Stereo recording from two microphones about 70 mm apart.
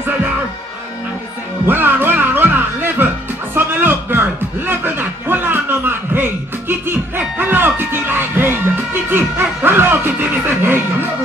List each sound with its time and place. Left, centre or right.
1.7 s music: right